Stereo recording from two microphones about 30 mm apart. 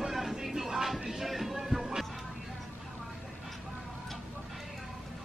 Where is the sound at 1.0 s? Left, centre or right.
Centre.